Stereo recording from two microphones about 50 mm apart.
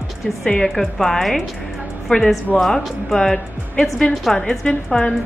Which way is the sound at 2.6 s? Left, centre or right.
Centre.